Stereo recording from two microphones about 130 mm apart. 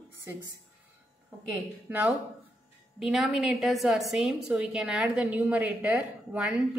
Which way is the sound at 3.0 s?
Centre (ahead or behind).